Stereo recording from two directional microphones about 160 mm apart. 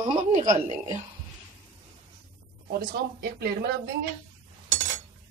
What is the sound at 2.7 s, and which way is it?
Speech, 85° right.